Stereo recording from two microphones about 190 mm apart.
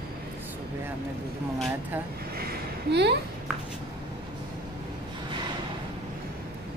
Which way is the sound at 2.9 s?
60° right (ahead or behind).